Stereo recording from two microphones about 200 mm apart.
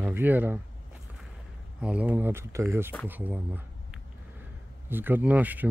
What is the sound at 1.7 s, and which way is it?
Speech, 5° right (ahead or behind).